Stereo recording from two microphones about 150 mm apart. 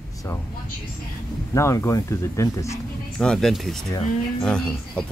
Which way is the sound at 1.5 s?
20° left (ahead or behind).